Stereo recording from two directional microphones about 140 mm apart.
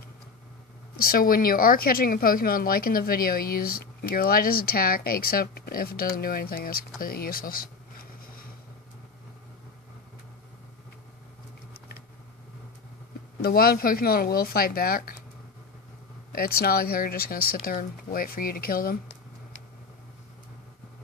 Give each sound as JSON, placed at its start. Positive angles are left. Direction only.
{"t": 0.9, "sound": "a woman's voice", "side_deg": 90}
{"t": 7.0, "sound": "a sound", "side_deg": 90}
{"t": 13.4, "sound": "a woman's voice", "side_deg": 90}
{"t": 16.3, "sound": "a woman's voice", "side_deg": 90}